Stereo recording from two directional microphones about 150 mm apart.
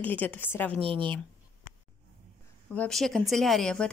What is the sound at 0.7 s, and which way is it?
Speech, 40° right (ahead or behind).